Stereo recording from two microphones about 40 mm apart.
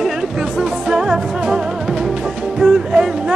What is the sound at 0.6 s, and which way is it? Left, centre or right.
Music, centre.